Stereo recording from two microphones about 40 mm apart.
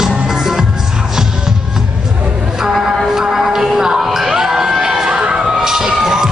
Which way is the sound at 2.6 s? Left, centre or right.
Centre.